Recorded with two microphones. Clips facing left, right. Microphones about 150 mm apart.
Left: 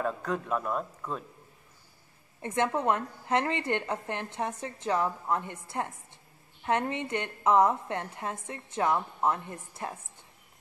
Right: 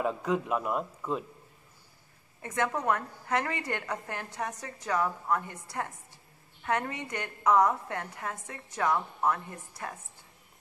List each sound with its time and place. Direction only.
0.0 s a man's voice: 10° right (ahead or behind)
2.4 s a woman's voice: 25° left (ahead or behind)